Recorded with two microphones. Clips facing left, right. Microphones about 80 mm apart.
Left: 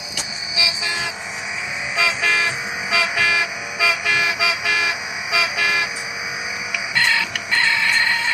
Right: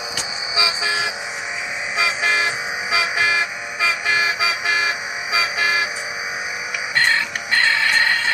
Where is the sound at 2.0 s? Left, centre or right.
Centre.